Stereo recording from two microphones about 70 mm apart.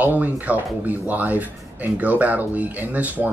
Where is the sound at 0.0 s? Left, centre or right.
Right.